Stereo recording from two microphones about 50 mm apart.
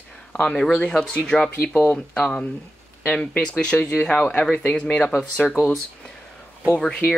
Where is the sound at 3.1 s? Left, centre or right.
Left.